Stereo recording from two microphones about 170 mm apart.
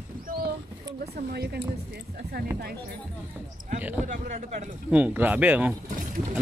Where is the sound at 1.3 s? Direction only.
70° right (ahead or behind).